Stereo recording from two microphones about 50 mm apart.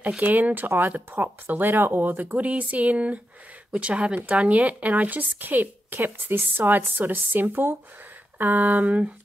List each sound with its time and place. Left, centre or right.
0.2 s speech: right